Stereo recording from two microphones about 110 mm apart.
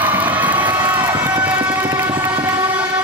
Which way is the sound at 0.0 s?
15° right (ahead or behind).